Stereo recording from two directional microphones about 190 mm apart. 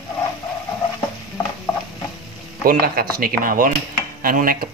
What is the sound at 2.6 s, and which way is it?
Speech, 50° right (ahead or behind).